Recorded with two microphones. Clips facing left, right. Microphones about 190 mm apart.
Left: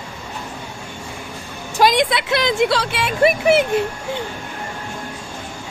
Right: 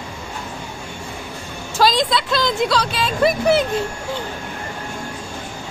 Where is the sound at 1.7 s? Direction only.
20° left (ahead or behind).